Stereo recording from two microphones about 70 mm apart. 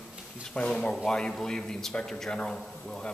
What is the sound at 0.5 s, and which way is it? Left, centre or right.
A man's voice, centre.